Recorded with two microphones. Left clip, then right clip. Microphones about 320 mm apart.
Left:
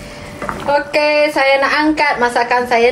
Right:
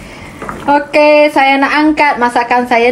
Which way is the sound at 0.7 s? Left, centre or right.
Right.